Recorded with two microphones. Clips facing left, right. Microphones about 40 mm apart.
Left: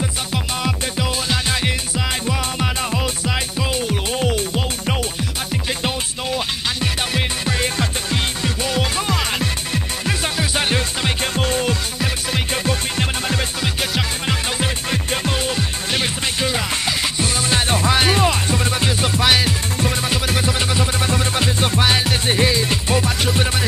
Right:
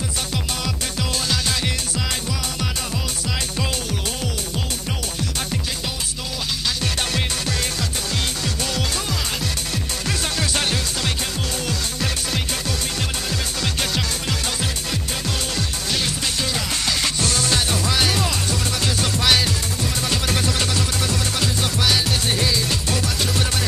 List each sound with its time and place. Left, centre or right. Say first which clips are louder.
0.3 s music: left 4 dB; left
6.8 s music: left 2 dB; left
11.3 s music: left 6 dB; left